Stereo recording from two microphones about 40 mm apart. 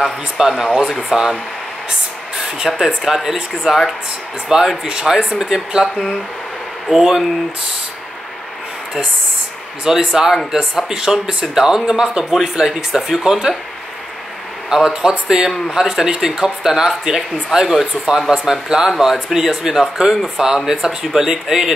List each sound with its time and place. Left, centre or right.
0.0 s speech: centre
2.3 s speech: centre
6.9 s speech: centre
9.8 s speech: centre
14.7 s speech: centre